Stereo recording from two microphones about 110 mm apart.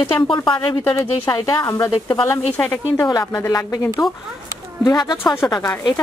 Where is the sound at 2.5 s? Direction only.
15° left (ahead or behind).